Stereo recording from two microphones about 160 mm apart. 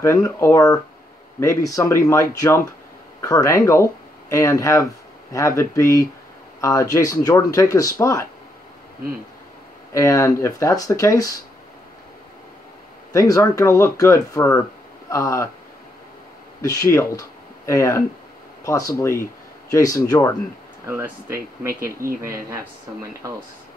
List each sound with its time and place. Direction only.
0.0 s speech: 20° left (ahead or behind)
9.9 s speech: 20° left (ahead or behind)
13.1 s speech: 20° left (ahead or behind)
16.6 s speech: 20° left (ahead or behind)
20.8 s speech: 15° right (ahead or behind)
21.7 s speech: 65° right (ahead or behind)